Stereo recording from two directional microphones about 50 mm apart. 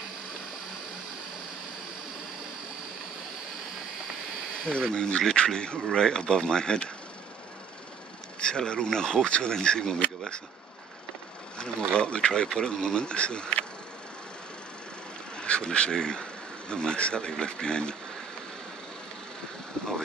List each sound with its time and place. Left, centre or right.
4.6 s speech: centre
8.4 s speech: centre
12.0 s speech: centre
15.3 s speech: left